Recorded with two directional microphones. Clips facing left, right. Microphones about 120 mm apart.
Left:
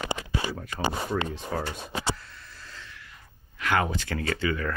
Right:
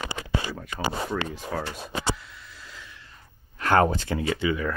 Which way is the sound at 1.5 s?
5° left (ahead or behind).